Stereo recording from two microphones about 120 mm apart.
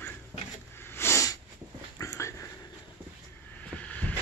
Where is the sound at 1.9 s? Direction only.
25° left (ahead or behind).